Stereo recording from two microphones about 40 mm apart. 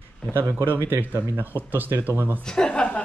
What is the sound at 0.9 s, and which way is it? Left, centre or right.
Speech, right.